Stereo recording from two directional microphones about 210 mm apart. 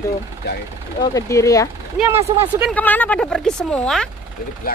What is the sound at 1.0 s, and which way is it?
Speech, 15° left (ahead or behind).